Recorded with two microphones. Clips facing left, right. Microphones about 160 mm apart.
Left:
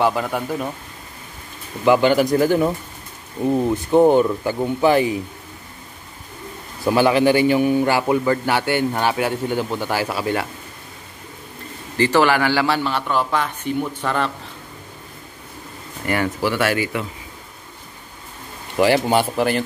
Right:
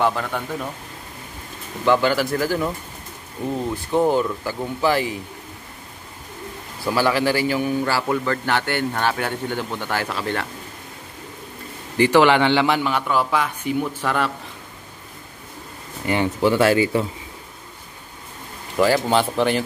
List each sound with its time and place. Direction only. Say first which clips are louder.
0.0 s a man's voice: left 2 dB; 10° left (ahead or behind)
1.9 s speech: left 4 dB; 20° left (ahead or behind)
6.8 s a man's voice: left 4 dB; 20° left (ahead or behind)
12.0 s a man's voice: right 2 dB; 15° right (ahead or behind)
16.1 s speech: right 2 dB; 20° right (ahead or behind)
19.0 s speech: left 1 dB; 10° left (ahead or behind)